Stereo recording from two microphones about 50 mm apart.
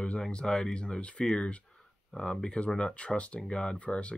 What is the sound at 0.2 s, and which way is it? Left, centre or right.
Speech, centre.